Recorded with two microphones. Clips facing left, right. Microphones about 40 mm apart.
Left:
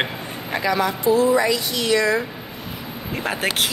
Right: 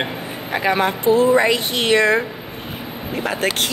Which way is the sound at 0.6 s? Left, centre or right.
Right.